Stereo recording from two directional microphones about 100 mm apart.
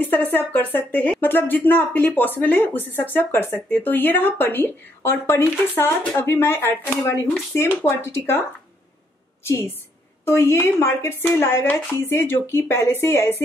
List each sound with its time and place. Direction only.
0.0 s speech: 20° left (ahead or behind)
9.4 s a woman's voice: 30° left (ahead or behind)